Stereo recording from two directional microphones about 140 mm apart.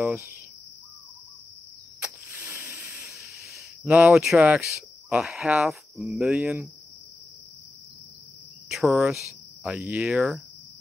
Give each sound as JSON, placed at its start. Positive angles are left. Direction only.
{"t": 0.0, "sound": "insect", "side_deg": -15}
{"t": 2.0, "sound": "a sound", "side_deg": -10}
{"t": 3.8, "sound": "speech", "side_deg": -10}
{"t": 8.7, "sound": "speech", "side_deg": 0}